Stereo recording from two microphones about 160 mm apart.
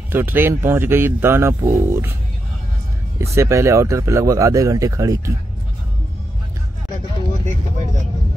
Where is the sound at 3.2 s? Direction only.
15° right (ahead or behind).